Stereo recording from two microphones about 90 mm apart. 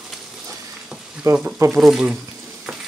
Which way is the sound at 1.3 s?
35° right (ahead or behind).